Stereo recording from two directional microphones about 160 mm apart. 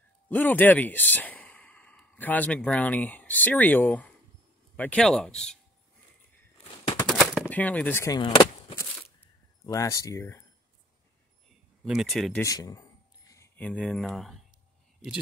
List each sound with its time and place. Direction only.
0.3 s speech: 10° left (ahead or behind)
7.4 s speech: 10° left (ahead or behind)
8.2 s a sound: 30° left (ahead or behind)
9.7 s speech: 20° left (ahead or behind)
11.8 s speech: centre (ahead or behind)
12.4 s speech: 20° left (ahead or behind)
13.6 s speech: 5° left (ahead or behind)